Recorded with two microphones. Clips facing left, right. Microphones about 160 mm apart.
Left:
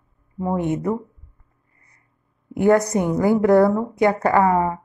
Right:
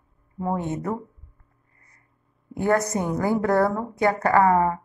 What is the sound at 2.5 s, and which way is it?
A woman's voice, 20° left (ahead or behind).